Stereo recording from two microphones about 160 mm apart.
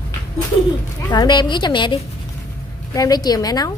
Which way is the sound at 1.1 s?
25° left (ahead or behind).